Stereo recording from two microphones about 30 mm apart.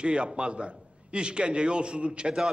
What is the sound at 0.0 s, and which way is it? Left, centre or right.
A man's voice, right.